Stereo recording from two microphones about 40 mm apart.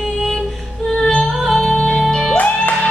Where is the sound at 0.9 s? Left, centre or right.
Centre.